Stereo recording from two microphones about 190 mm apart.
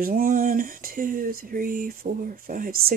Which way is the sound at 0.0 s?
45° right (ahead or behind).